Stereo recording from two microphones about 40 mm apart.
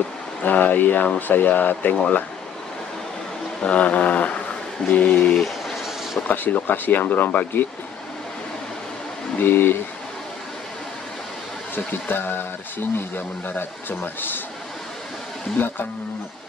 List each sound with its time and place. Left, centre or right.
0.4 s speech: left
3.6 s a sound: left
4.8 s speech: left
5.4 s a sound: centre
6.2 s speech: left
9.4 s speech: left
11.7 s speech: left
15.6 s speech: left